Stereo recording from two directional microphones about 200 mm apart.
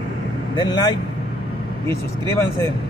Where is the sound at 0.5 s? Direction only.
20° left (ahead or behind).